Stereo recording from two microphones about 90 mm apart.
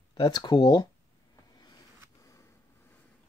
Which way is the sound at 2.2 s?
40° left (ahead or behind).